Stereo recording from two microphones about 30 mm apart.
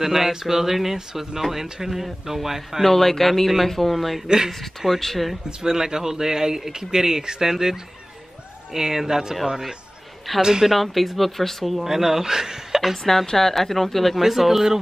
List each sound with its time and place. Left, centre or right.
0.0 s speech: centre
2.8 s a man's voice: centre
5.6 s speech: centre
10.7 s speech: centre
11.8 s speech: centre
13.0 s a man's voice: centre
14.2 s speech: centre